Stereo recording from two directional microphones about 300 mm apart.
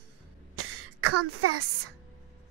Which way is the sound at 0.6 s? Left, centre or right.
Right.